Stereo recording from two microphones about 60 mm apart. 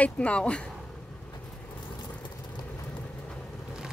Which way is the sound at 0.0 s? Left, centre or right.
Centre.